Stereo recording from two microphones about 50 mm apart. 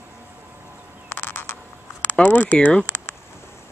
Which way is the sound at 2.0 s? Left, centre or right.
Left.